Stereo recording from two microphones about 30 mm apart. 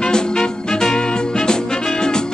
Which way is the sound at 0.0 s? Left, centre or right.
Left.